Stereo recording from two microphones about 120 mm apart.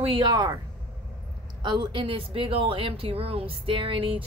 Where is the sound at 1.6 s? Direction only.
40° right (ahead or behind).